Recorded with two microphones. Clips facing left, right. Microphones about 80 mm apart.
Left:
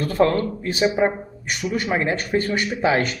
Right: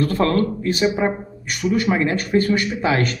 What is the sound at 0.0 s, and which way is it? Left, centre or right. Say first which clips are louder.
Speech: right 1 dB; left.